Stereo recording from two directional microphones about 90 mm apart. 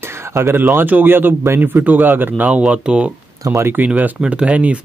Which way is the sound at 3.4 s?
30° right (ahead or behind).